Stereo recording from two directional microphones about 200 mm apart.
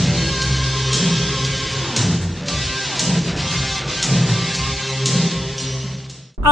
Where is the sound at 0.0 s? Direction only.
Centre (ahead or behind).